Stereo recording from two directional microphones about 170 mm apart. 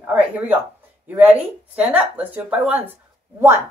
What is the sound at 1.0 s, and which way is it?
Speech, 10° right (ahead or behind).